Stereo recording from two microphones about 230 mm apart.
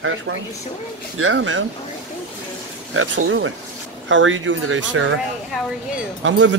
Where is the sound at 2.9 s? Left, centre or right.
Right.